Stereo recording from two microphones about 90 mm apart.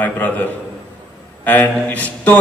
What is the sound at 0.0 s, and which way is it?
A man's voice, 20° left (ahead or behind).